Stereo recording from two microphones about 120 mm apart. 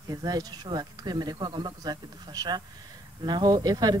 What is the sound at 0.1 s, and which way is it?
Speech, 35° right (ahead or behind).